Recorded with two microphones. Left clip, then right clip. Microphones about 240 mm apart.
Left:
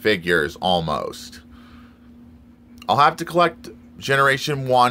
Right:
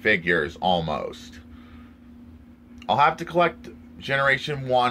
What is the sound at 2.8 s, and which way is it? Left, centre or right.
Speech, left.